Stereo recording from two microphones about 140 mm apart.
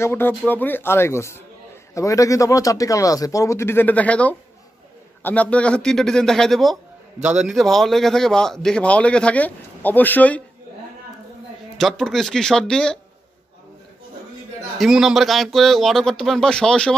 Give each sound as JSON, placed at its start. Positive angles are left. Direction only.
{"t": 0.0, "sound": "a man's voice", "side_deg": 15}
{"t": 11.8, "sound": "a man's voice", "side_deg": 0}
{"t": 14.8, "sound": "a man's voice", "side_deg": -5}